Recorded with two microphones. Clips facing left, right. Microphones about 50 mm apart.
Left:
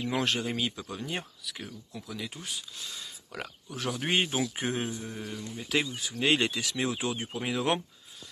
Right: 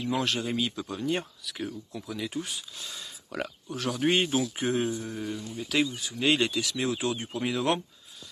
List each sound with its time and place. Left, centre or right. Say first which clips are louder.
0.0 s speech: right 1 dB; left
0.5 s a man's voice: right 2 dB; centre
1.0 s speech: right 8 dB; centre
3.7 s a man's voice: right 3 dB; centre
5.0 s speech: right 4 dB; centre
5.7 s a man's voice: right 2 dB; left